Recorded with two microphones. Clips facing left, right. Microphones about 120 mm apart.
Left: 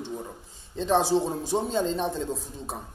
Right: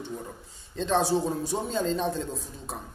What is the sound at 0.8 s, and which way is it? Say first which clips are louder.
A man's voice: left 2 dB; 25° left (ahead or behind).